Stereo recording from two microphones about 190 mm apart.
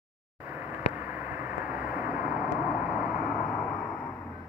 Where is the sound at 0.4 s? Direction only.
10° right (ahead or behind).